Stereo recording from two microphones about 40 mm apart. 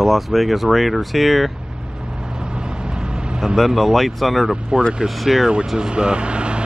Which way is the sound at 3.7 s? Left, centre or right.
Centre.